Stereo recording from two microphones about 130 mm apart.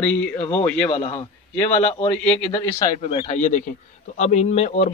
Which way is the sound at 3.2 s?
60° left (ahead or behind).